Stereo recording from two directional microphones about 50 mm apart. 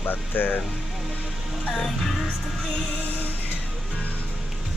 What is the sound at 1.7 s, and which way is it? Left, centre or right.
Music, centre.